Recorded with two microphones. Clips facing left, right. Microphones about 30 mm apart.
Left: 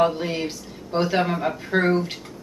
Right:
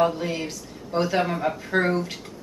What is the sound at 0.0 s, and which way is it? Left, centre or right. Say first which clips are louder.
A woman's voice: left 2 dB; centre.